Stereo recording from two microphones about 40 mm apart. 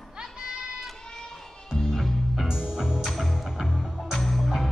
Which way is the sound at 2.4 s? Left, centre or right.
Right.